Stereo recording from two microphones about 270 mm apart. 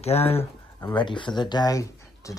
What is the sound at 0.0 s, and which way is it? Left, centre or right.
Speech, left.